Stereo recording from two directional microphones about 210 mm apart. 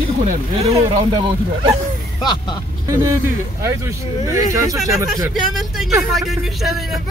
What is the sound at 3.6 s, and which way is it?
Speech, 15° right (ahead or behind).